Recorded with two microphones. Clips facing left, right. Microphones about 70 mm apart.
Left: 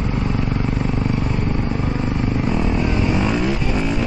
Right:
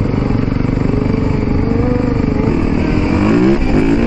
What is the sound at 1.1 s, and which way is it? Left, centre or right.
Vehicle, right.